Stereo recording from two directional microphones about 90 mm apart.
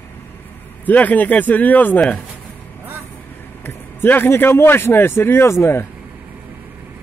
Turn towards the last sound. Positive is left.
turn(degrees=30)  # may be behind; listen again after turning